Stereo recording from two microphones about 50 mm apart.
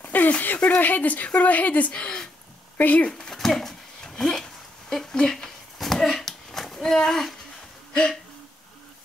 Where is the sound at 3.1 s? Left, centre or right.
Centre.